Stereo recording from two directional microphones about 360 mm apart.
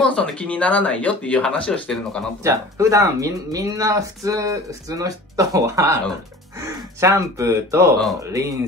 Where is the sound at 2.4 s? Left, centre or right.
Centre.